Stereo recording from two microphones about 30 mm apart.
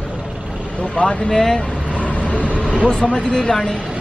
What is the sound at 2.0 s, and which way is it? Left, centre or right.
Vehicle, left.